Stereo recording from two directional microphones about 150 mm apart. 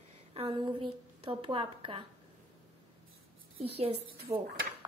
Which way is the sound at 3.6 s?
40° right (ahead or behind).